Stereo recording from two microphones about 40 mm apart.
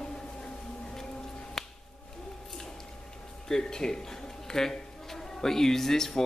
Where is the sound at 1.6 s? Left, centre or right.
Centre.